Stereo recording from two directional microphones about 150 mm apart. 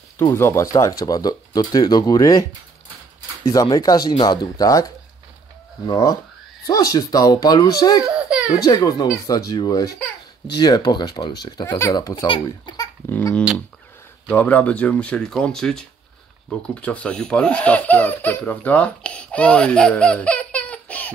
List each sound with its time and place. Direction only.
0.2 s speech: 20° left (ahead or behind)
3.7 s speech: 25° left (ahead or behind)
12.3 s speech: 35° left (ahead or behind)
13.1 s speech: 10° left (ahead or behind)